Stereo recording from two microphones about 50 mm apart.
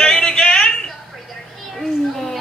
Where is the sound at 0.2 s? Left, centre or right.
Centre.